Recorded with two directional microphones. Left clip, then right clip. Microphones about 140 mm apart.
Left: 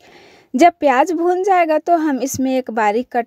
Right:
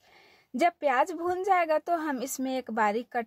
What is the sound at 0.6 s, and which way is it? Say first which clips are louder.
A woman's voice: left 13 dB; 55° left (ahead or behind).